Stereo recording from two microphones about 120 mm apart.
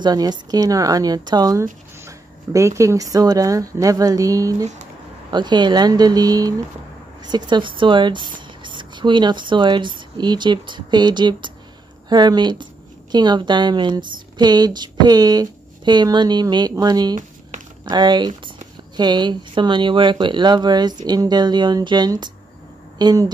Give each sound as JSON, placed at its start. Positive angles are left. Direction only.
{"t": 0.0, "sound": "a woman's voice", "side_deg": -35}
{"t": 17.5, "sound": "a sound", "side_deg": -90}
{"t": 17.8, "sound": "a woman's voice", "side_deg": -35}